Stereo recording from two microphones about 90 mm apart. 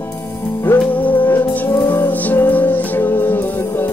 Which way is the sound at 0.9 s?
20° left (ahead or behind).